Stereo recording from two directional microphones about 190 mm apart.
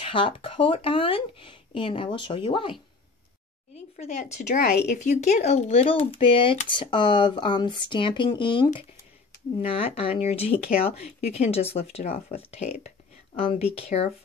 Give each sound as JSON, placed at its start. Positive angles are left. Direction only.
{"t": 0.0, "sound": "speech", "side_deg": 30}
{"t": 3.9, "sound": "speech", "side_deg": 40}
{"t": 9.8, "sound": "speech", "side_deg": 30}